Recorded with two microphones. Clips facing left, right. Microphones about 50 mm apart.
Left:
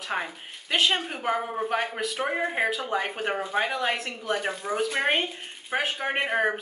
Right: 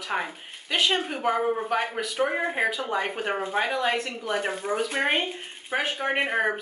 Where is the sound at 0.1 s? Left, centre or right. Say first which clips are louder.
Right 2 dB; centre.